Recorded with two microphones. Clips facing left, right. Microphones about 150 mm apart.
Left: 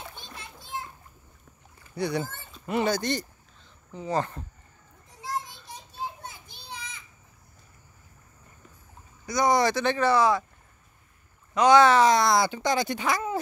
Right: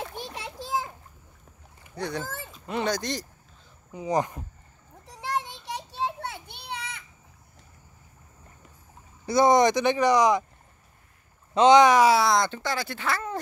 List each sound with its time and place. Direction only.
0.4 s children playing: 90° right
2.0 s speech: 10° left (ahead or behind)
2.2 s a sound: 90° right
2.6 s speech: 5° left (ahead or behind)
3.9 s speech: 15° right (ahead or behind)
5.0 s children playing: 75° right (ahead or behind)
9.2 s speech: 25° right (ahead or behind)
11.5 s speech: 20° right (ahead or behind); by 12.4 s centre (ahead or behind)
12.4 s speech: 15° left (ahead or behind)